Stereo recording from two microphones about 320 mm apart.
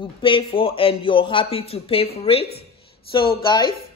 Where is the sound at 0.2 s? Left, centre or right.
Centre.